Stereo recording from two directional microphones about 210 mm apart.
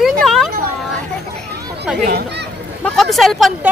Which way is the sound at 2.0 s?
50° right (ahead or behind).